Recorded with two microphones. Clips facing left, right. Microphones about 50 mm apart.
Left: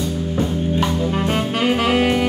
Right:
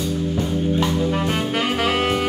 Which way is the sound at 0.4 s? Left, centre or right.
Left.